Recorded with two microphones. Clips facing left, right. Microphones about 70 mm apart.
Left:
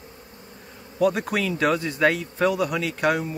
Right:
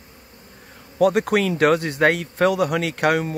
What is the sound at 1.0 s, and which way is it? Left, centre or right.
Speech, right.